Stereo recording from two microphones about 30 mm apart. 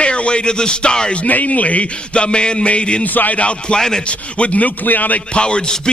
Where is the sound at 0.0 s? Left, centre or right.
Left.